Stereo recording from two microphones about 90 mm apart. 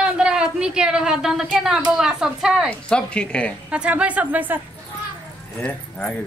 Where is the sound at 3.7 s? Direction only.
15° right (ahead or behind).